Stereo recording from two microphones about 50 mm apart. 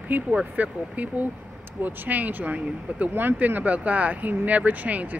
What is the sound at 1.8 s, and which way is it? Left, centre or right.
Speech, right.